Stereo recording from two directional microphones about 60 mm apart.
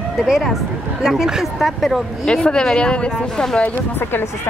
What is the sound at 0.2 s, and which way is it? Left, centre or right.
Speech, centre.